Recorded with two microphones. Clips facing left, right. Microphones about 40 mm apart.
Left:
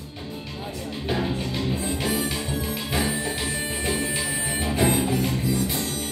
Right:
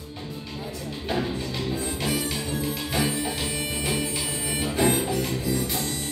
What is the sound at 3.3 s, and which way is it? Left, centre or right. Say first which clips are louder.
Music: left 1 dB; centre.